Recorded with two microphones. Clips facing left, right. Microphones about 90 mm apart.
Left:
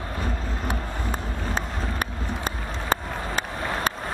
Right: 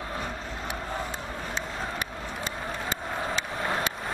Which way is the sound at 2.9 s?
45° left (ahead or behind).